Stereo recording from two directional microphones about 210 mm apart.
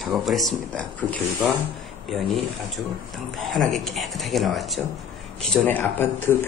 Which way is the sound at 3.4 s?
Centre (ahead or behind).